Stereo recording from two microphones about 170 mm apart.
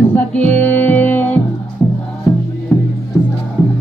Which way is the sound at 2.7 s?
Centre (ahead or behind).